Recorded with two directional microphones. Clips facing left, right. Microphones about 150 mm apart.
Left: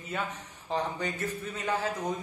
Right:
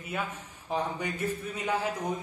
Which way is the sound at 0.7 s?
10° right (ahead or behind).